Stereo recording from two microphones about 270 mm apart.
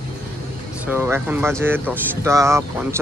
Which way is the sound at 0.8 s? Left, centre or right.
Centre.